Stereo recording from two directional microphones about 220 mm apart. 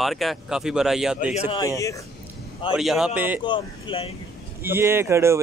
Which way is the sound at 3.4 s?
20° left (ahead or behind).